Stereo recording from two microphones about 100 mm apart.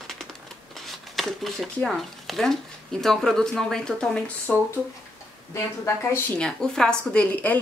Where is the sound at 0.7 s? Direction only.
Centre (ahead or behind).